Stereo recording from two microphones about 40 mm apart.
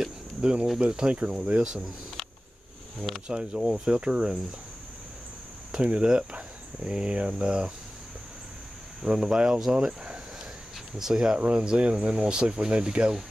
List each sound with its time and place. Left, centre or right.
0.4 s speech: right
3.3 s speech: right
5.7 s speech: right
9.0 s speech: centre
11.3 s speech: right